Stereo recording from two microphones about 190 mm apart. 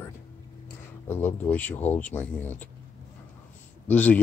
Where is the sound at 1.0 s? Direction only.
10° left (ahead or behind).